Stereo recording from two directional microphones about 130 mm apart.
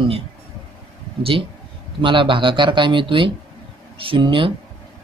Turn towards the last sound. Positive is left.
turn(degrees=-40)  # may be behind; listen again after turning